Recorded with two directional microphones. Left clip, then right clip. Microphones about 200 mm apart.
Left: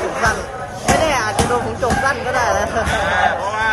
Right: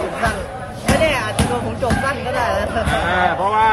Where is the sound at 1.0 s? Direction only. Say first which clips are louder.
Right 2 dB; 15° left (ahead or behind).